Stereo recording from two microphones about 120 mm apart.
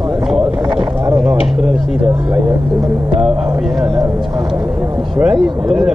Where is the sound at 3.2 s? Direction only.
5° right (ahead or behind).